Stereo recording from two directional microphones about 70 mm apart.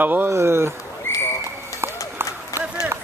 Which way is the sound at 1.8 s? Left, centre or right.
Right.